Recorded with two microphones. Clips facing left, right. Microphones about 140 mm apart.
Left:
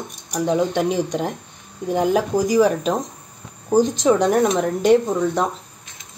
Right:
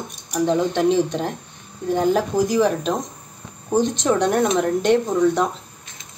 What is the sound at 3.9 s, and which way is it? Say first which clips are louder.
Speech: left 2 dB; 5° left (ahead or behind).